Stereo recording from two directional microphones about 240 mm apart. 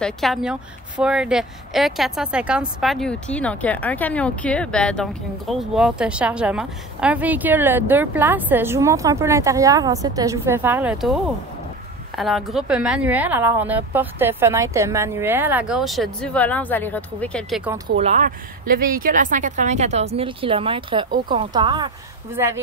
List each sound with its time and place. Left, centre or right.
0.0 s speech: centre
12.2 s speech: centre
17.8 s speech: right